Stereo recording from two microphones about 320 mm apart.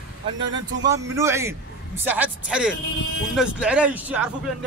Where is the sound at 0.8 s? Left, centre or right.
Centre.